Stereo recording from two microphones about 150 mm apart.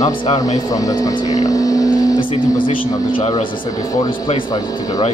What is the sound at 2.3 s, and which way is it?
Speech, 35° left (ahead or behind).